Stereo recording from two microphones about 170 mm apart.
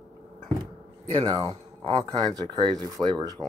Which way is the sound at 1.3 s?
20° right (ahead or behind).